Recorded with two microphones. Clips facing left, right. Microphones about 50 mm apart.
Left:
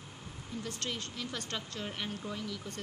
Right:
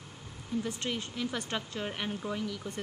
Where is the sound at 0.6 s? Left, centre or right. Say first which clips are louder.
Right 4 dB; centre.